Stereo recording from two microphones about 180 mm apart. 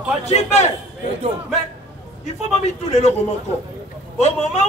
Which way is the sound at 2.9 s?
40° left (ahead or behind).